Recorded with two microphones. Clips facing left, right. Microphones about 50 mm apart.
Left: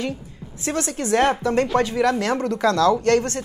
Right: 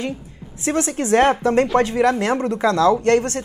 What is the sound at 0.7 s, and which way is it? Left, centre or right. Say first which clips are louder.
Speech: right 4 dB; right.